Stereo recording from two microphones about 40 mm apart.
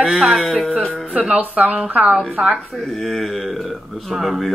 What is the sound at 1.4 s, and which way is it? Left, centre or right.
Speech, right.